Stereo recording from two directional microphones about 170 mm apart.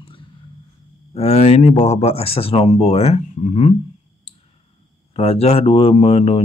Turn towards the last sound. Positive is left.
turn(degrees=35)  # may be behind; listen again after turning